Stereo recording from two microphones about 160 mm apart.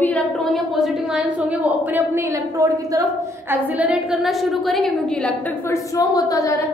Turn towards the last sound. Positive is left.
turn(degrees=20)  # may be behind; listen again after turning